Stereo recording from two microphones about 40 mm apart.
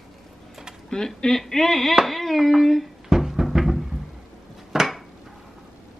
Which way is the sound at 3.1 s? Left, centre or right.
Centre.